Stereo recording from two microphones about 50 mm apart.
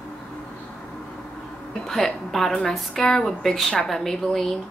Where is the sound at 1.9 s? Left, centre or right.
Centre.